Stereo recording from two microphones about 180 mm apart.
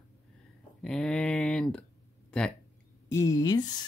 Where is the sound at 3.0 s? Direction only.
15° left (ahead or behind).